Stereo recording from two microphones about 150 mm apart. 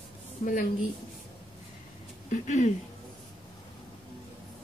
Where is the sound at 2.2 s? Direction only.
55° left (ahead or behind).